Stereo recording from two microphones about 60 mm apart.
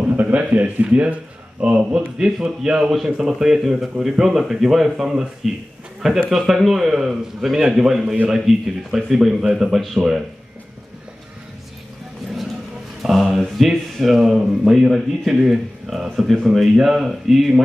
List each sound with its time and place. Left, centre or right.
0.0 s a man's voice: right; by 5.3 s centre
6.3 s speech: centre
13.0 s speech: centre